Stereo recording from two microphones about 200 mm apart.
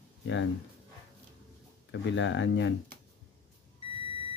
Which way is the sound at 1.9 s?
65° left (ahead or behind).